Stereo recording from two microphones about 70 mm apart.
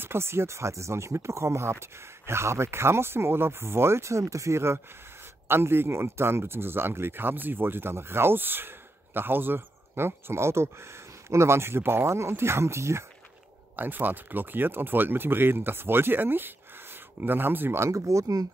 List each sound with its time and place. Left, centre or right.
0.0 s speech: right
13.7 s speech: right